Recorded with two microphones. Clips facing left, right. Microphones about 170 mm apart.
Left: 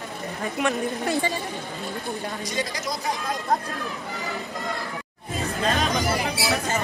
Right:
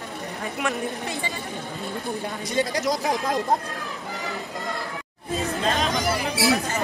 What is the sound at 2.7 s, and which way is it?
Speech, 70° right (ahead or behind).